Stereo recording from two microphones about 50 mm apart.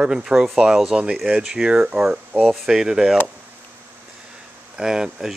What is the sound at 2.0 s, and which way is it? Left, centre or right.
Speech, centre.